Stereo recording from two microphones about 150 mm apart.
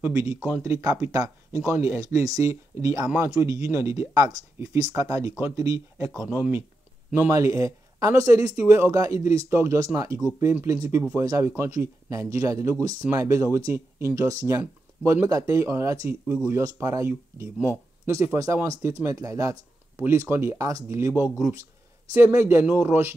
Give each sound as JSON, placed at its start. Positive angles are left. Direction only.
{"t": 0.0, "sound": "speech", "side_deg": -15}
{"t": 6.1, "sound": "speech", "side_deg": -10}